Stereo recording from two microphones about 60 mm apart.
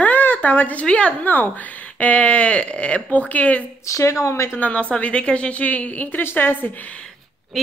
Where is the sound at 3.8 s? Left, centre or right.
Left.